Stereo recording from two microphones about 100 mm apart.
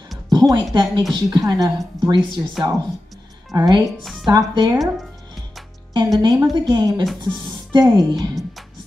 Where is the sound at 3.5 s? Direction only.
45° right (ahead or behind).